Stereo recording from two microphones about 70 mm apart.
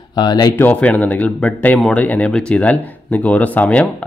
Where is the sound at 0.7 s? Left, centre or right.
Left.